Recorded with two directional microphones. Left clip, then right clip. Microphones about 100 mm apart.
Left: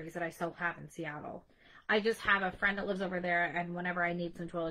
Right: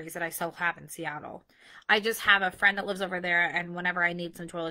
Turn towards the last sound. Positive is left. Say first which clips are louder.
# right 3 dB
turn(degrees=-20)  # may be behind; listen again after turning